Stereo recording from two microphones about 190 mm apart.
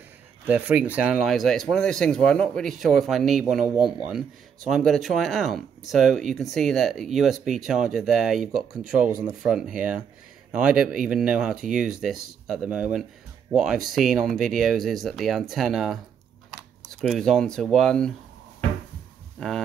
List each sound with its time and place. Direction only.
0.5 s speech: 10° right (ahead or behind)
17.0 s speech: centre (ahead or behind)
19.4 s speech: 5° left (ahead or behind)